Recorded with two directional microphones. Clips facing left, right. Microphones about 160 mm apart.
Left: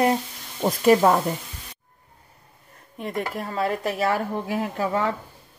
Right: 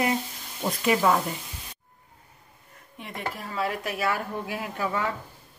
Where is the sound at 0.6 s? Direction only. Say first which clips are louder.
Left 7 dB; 45° left (ahead or behind).